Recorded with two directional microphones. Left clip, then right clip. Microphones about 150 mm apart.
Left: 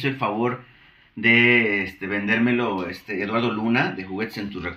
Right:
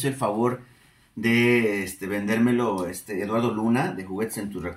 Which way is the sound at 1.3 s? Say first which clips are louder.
Left 4 dB; 30° right (ahead or behind).